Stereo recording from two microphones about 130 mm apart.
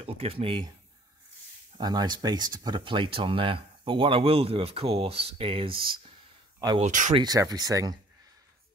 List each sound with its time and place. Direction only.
0.0 s speech: 50° right (ahead or behind)
1.8 s speech: 30° right (ahead or behind)
6.8 s speech: 70° right (ahead or behind)
7.2 s speech: 30° right (ahead or behind)